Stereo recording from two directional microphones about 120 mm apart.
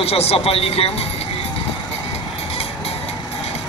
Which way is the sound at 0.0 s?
55° left (ahead or behind).